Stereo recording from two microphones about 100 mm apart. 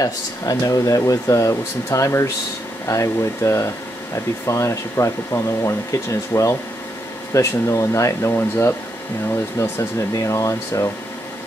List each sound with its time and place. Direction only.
0.0 s speech: 35° left (ahead or behind)